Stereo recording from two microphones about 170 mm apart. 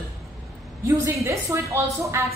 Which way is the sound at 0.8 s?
15° right (ahead or behind).